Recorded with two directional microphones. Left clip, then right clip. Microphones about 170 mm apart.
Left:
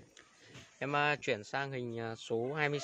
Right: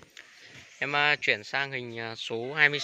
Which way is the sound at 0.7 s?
5° left (ahead or behind).